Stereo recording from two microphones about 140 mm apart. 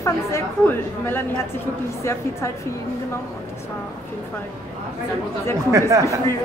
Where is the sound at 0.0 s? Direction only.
20° left (ahead or behind).